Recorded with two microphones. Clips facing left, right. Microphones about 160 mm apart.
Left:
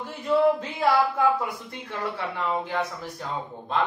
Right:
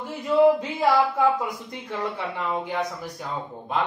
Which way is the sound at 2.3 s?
15° right (ahead or behind).